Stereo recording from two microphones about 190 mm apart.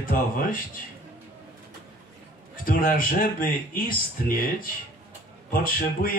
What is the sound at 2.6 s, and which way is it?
Speech, 50° left (ahead or behind).